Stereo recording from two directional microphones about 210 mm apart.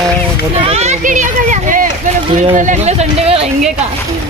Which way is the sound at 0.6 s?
30° right (ahead or behind).